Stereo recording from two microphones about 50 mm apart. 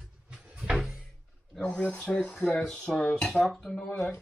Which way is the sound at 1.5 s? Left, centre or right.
Centre.